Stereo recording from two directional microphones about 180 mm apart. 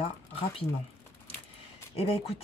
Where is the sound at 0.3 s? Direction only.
30° left (ahead or behind).